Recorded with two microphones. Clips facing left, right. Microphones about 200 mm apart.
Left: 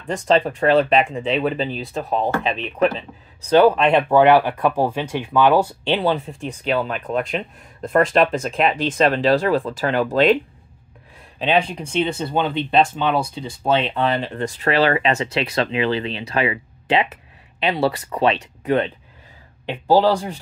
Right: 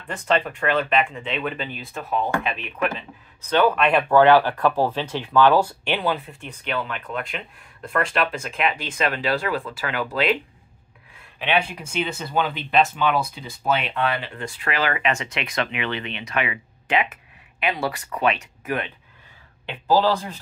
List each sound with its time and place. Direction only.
0.3 s speech: 35° left (ahead or behind)
6.2 s speech: 35° left (ahead or behind)